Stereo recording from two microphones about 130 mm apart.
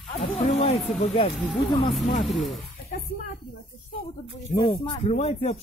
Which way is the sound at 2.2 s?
Centre (ahead or behind).